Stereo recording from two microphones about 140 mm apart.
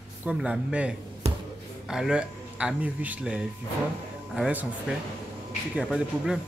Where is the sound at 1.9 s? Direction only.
5° right (ahead or behind).